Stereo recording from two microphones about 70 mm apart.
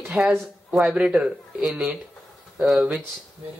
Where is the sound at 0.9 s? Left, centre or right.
Centre.